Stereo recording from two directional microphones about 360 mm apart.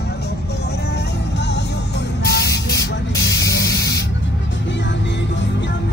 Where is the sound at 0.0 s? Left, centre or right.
Left.